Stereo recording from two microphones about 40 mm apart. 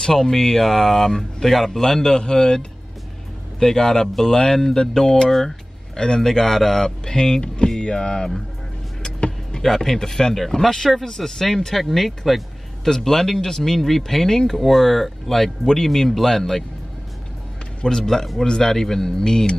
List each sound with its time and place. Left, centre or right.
0.0 s speech: centre
9.0 s vehicle: centre
9.6 s speech: centre
17.8 s speech: centre